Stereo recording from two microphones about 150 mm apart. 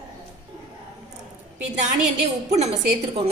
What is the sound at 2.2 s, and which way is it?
Speech, 50° right (ahead or behind).